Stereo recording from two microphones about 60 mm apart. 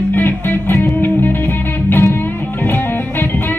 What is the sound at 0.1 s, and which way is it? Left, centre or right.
Music, left.